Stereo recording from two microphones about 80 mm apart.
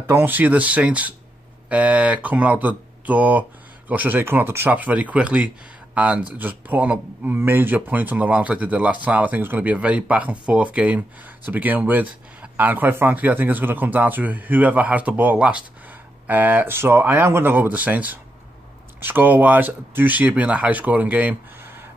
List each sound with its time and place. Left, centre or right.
0.1 s speech: right